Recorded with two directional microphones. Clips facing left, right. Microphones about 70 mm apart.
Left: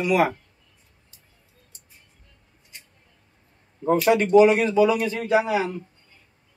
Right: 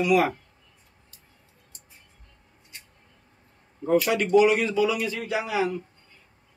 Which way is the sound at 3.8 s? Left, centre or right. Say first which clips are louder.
Left 3 dB; left.